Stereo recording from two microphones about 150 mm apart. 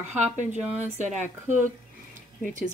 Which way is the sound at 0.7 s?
45° right (ahead or behind).